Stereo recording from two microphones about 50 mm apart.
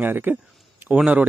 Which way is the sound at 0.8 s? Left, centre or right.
Right.